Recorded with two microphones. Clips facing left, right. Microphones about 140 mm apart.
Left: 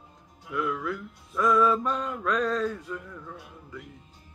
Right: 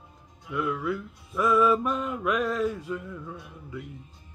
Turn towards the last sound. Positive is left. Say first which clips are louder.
# right 3 dB
turn(degrees=-5)  # may be behind; listen again after turning